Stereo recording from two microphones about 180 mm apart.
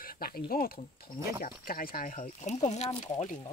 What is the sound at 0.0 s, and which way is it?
Speech, 55° left (ahead or behind).